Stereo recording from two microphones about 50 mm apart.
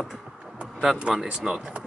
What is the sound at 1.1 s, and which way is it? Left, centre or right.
Speech, centre.